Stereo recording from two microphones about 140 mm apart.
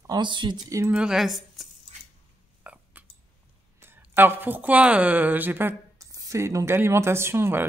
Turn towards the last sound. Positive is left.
turn(degrees=-15)  # may be behind; listen again after turning